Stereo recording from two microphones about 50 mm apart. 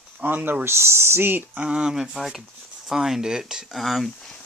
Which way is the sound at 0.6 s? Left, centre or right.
Right.